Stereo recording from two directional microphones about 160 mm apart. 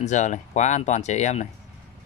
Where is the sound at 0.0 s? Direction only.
50° left (ahead or behind).